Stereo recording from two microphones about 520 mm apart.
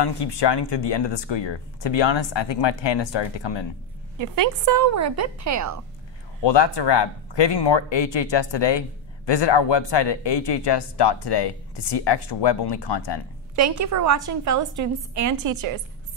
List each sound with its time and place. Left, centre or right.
0.0 s speech: left
4.2 s a woman's voice: right
6.4 s speech: left
13.6 s a woman's voice: right